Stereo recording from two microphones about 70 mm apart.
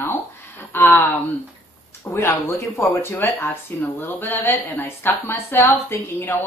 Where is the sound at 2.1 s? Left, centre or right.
Left.